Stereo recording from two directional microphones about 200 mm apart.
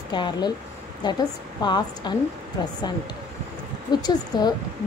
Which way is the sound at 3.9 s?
20° left (ahead or behind).